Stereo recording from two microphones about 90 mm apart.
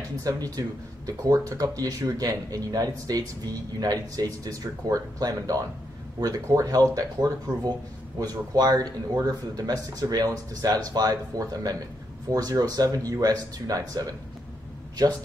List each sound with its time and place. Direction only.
0.2 s speech: 40° right (ahead or behind)